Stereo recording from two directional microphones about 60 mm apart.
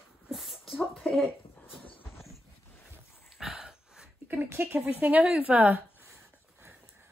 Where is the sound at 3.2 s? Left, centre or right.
Centre.